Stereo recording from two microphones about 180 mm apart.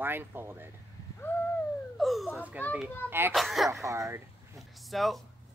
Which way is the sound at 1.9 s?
Centre (ahead or behind).